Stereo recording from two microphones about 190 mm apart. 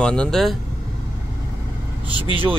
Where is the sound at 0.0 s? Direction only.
5° left (ahead or behind).